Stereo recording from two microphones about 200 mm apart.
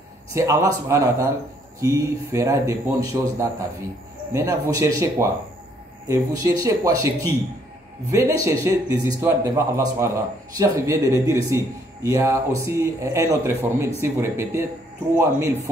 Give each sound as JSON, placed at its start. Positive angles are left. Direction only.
{"t": 0.3, "sound": "speech", "side_deg": -15}